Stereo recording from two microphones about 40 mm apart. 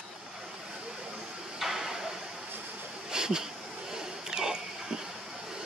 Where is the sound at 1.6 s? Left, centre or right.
Centre.